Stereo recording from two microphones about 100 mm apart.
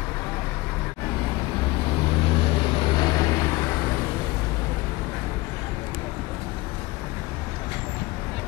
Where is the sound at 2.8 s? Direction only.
45° left (ahead or behind).